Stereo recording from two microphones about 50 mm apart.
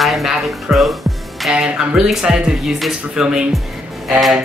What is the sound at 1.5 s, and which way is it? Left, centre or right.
Speech, centre.